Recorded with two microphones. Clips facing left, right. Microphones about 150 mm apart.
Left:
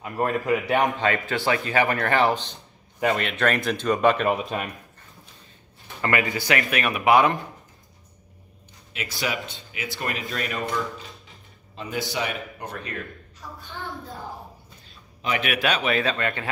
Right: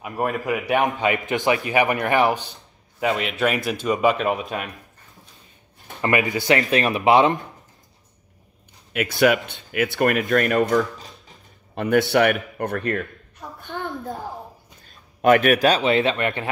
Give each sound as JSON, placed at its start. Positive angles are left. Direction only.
{"t": 0.0, "sound": "speech", "side_deg": -15}
{"t": 5.9, "sound": "speech", "side_deg": -20}
{"t": 8.9, "sound": "speech", "side_deg": -55}
{"t": 11.7, "sound": "a woman's voice", "side_deg": -65}